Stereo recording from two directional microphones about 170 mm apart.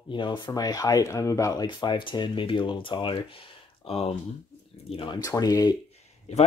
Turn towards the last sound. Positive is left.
turn(degrees=40)  # may be behind; listen again after turning